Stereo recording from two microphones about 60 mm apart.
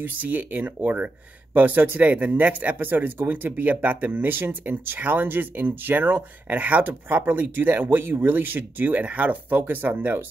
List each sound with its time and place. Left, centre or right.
0.0 s speech: right
6.9 s speech: right